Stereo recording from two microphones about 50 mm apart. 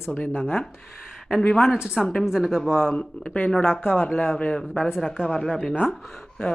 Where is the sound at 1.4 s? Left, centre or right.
Centre.